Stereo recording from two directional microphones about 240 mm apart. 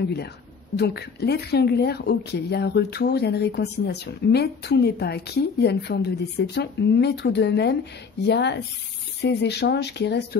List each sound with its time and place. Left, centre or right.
0.7 s speech: left